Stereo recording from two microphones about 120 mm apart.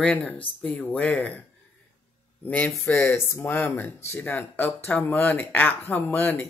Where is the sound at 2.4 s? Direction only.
10° left (ahead or behind).